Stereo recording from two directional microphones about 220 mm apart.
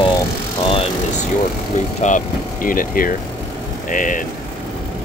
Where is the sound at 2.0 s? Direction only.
35° left (ahead or behind).